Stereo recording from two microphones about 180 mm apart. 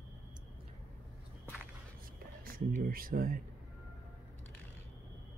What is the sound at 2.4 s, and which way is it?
Speech, 50° right (ahead or behind).